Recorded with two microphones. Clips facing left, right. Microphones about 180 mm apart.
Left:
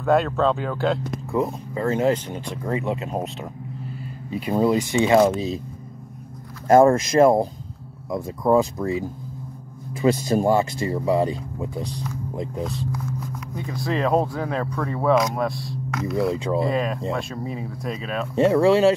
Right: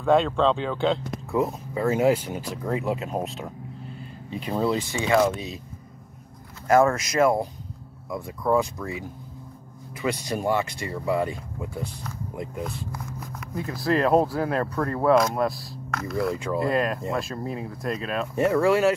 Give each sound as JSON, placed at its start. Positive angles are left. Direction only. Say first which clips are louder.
{"t": 0.0, "sound": "speech", "louder": "left 1 dB", "side_deg": 5}
{"t": 4.9, "sound": "speech", "louder": "left 5 dB", "side_deg": 25}
{"t": 6.7, "sound": "speech", "louder": "left 5 dB", "side_deg": 30}
{"t": 10.2, "sound": "speech", "louder": "left 6 dB", "side_deg": 40}
{"t": 10.8, "sound": "speech", "louder": "left 5 dB", "side_deg": 25}
{"t": 12.6, "sound": "speech", "louder": "left 5 dB", "side_deg": -5}
{"t": 18.3, "sound": "speech", "louder": "left 4 dB", "side_deg": 25}